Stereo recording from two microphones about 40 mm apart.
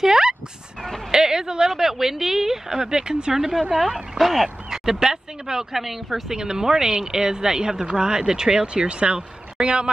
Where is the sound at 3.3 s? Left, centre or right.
Centre.